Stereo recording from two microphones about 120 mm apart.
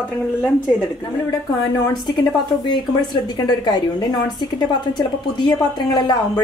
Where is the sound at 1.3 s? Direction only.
35° left (ahead or behind).